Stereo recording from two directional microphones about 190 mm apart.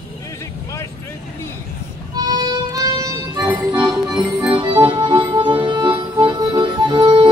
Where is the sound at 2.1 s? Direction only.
20° right (ahead or behind).